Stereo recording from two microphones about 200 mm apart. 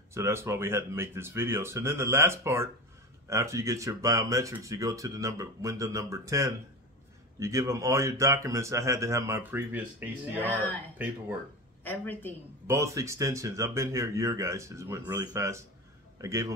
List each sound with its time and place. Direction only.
0.1 s speech: 15° right (ahead or behind)
11.8 s a woman's voice: 10° left (ahead or behind)
12.6 s speech: 15° right (ahead or behind)